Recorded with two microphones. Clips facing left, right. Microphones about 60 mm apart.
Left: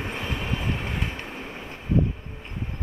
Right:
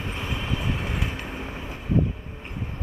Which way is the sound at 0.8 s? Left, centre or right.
Centre.